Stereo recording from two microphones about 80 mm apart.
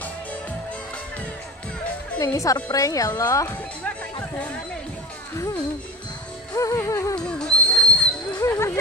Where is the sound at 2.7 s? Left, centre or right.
Left.